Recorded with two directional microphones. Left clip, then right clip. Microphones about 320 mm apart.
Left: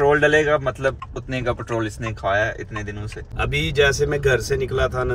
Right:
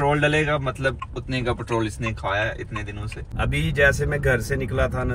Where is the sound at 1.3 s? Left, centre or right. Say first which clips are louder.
Left 1 dB; left.